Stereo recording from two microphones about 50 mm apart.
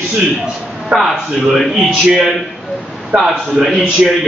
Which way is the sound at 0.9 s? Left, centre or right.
Right.